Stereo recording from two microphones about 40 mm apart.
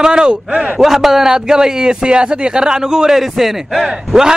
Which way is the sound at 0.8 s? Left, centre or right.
Centre.